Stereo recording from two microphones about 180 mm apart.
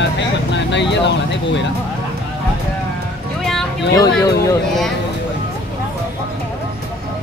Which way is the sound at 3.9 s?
20° left (ahead or behind).